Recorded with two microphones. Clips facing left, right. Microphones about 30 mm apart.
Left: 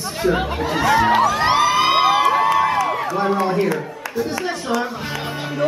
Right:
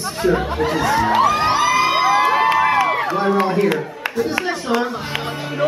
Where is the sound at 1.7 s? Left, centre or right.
Centre.